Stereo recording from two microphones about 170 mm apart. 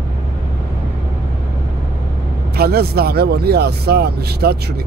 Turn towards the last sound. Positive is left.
turn(degrees=-70)  # may be behind; listen again after turning